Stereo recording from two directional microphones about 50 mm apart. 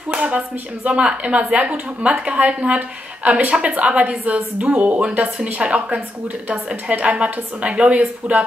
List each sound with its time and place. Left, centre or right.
0.1 s a woman's voice: right